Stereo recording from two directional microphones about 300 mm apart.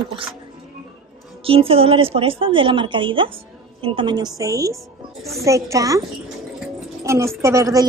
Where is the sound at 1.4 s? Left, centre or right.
Centre.